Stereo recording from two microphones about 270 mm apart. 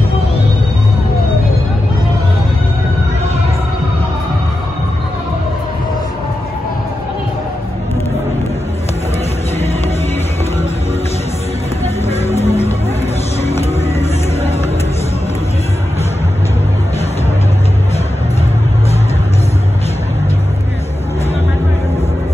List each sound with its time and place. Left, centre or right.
12.1 s music: left